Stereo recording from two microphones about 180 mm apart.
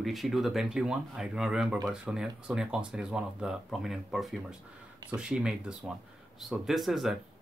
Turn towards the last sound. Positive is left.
turn(degrees=0)  # may be behind; listen again after turning